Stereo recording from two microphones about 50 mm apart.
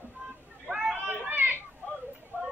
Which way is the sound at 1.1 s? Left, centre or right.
Right.